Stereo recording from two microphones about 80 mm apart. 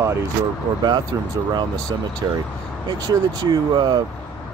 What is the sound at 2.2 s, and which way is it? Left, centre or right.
Speech, right.